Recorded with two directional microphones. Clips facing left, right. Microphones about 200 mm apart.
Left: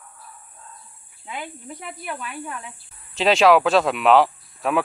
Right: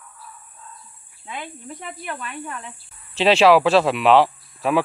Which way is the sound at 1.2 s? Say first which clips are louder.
Even; 5° left (ahead or behind).